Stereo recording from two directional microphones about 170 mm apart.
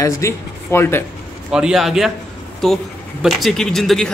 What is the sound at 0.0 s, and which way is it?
Speech, 15° left (ahead or behind).